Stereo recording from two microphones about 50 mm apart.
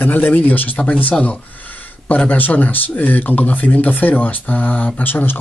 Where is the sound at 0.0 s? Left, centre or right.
Left.